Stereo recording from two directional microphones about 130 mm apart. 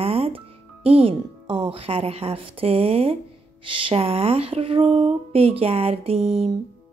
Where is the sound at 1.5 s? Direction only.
35° right (ahead or behind).